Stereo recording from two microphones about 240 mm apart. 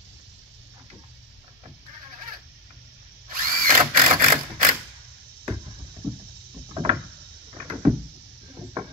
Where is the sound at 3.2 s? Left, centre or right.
Right.